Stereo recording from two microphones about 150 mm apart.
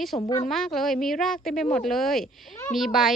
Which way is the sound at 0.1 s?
35° left (ahead or behind).